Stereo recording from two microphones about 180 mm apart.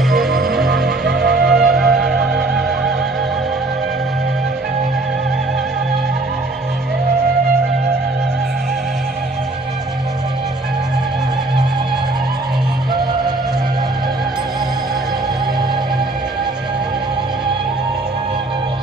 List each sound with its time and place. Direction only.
0.1 s music: centre (ahead or behind)
0.8 s music: 65° right (ahead or behind)
1.4 s music: centre (ahead or behind)